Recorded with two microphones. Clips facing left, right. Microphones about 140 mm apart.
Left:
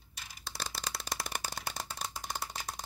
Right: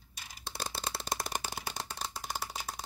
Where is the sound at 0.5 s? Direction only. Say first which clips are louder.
Right 2 dB; 30° right (ahead or behind).